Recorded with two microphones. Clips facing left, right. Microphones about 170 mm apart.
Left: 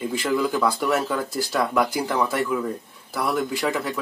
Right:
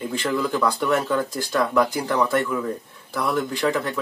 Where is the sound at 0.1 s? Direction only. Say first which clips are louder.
Even; 5° left (ahead or behind).